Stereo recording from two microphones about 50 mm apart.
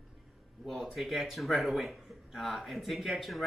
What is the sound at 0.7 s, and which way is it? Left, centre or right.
Speech, centre.